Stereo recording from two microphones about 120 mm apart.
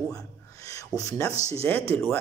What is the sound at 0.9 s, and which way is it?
Speech, 25° left (ahead or behind).